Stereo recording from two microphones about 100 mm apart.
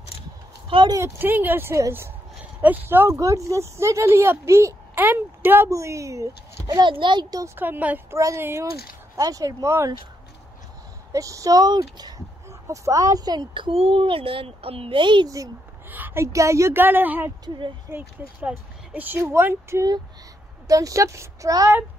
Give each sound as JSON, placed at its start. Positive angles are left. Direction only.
{"t": 0.8, "sound": "speech", "side_deg": -30}
{"t": 6.8, "sound": "a child's voice", "side_deg": -55}
{"t": 7.4, "sound": "speech", "side_deg": -20}
{"t": 8.1, "sound": "speech", "side_deg": -30}
{"t": 9.1, "sound": "speech", "side_deg": -35}
{"t": 11.1, "sound": "speech", "side_deg": -35}
{"t": 12.4, "sound": "speech", "side_deg": -30}
{"t": 13.7, "sound": "speech", "side_deg": -70}
{"t": 15.2, "sound": "speech", "side_deg": -35}
{"t": 15.9, "sound": "speech", "side_deg": -20}
{"t": 18.9, "sound": "speech", "side_deg": -20}